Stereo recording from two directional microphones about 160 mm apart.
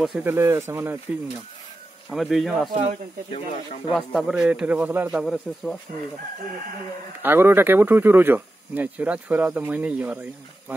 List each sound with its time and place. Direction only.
0.2 s speech: 15° right (ahead or behind)
2.0 s a man's voice: centre (ahead or behind)
3.3 s speech: 35° left (ahead or behind)
3.9 s a man's voice: centre (ahead or behind)
5.2 s a man's voice: centre (ahead or behind)
7.2 s speech: 15° right (ahead or behind)